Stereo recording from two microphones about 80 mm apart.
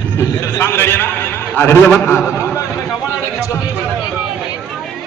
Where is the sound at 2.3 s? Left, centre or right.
Left.